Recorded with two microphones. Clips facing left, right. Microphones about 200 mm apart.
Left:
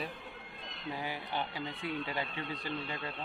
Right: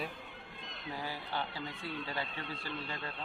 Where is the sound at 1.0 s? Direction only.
15° left (ahead or behind).